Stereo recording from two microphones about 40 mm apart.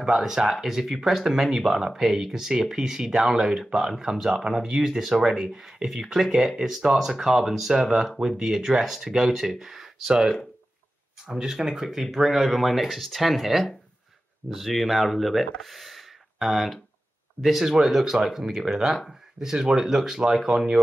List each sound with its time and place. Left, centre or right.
0.0 s speech: centre